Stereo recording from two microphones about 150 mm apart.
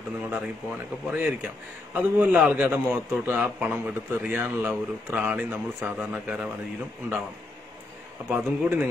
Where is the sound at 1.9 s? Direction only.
10° right (ahead or behind).